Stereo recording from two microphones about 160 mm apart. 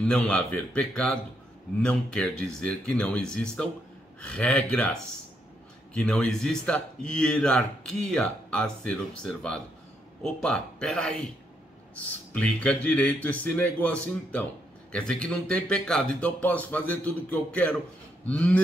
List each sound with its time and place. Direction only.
0.0 s a man's voice: 5° left (ahead or behind)